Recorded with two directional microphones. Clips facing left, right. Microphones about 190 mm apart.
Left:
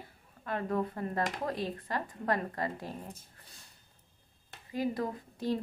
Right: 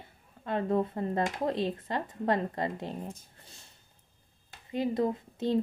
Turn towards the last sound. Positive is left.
turn(degrees=-25)  # may be behind; listen again after turning